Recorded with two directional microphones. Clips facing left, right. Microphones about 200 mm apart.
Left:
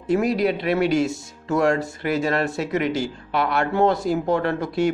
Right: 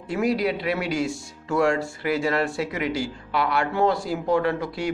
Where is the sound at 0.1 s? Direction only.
45° left (ahead or behind).